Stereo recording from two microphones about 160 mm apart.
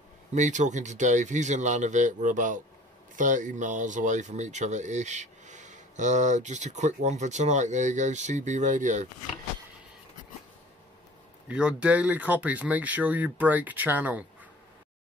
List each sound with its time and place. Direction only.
0.3 s speech: 50° right (ahead or behind)
11.4 s speech: 5° right (ahead or behind)